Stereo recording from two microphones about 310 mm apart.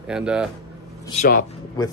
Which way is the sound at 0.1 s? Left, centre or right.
Centre.